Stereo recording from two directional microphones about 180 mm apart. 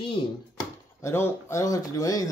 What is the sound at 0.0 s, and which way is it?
Speech, 25° left (ahead or behind).